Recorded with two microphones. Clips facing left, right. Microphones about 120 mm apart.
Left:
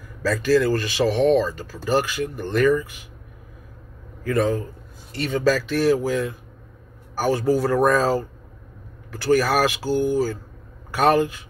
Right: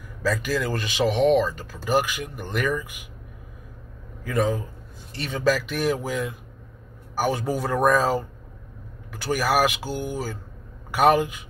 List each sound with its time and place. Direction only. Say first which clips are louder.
0.2 s speech: left 6 dB; 15° right (ahead or behind)
4.2 s speech: left 3 dB; 15° right (ahead or behind)